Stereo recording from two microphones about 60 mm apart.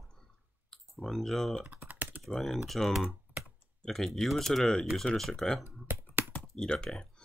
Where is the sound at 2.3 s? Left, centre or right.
Centre.